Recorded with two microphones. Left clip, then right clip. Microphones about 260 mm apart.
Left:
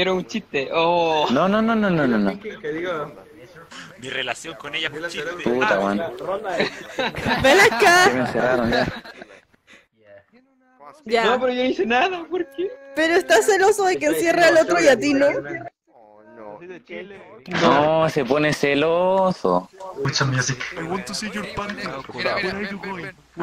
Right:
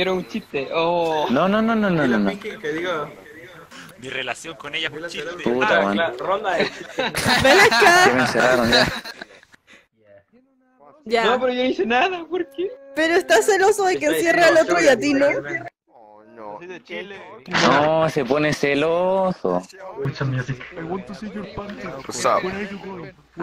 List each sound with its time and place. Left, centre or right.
0.0 s speech: centre
1.3 s a woman's voice: centre
2.6 s speech: centre
3.7 s a woman's voice: centre
5.9 s a man's voice: right
6.5 s a woman's voice: centre
7.2 s speech: right
7.4 s a woman's voice: centre
8.3 s a man's voice: right
11.1 s a woman's voice: centre
15.3 s speech: centre
17.8 s speech: centre; by 19.6 s left
20.1 s a man's voice: left